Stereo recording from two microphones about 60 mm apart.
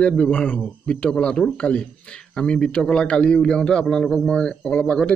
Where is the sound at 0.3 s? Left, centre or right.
Left.